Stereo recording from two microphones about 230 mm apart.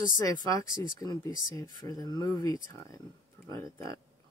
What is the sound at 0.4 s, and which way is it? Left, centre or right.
Speech, centre.